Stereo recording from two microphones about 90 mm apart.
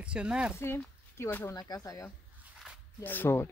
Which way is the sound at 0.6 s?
30° left (ahead or behind).